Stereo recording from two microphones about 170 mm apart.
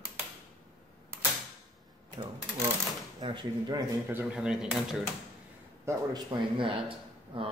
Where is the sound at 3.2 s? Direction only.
25° right (ahead or behind).